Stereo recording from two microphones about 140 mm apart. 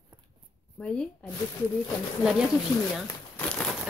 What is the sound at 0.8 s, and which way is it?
Speech, 5° left (ahead or behind).